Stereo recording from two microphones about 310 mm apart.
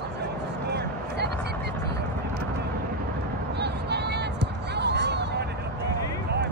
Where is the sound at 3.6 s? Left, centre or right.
Right.